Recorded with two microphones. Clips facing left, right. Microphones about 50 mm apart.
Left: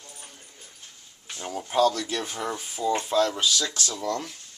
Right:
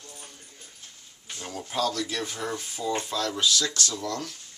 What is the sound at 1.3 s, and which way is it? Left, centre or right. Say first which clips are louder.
Speech: left 5 dB; centre.